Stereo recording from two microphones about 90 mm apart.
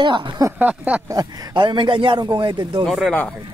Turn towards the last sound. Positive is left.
turn(degrees=5)  # may be behind; listen again after turning